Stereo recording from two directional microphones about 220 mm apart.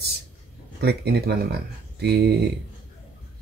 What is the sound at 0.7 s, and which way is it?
Speech, 45° right (ahead or behind).